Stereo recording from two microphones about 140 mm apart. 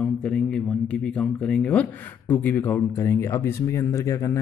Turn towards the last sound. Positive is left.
turn(degrees=20)  # may be behind; listen again after turning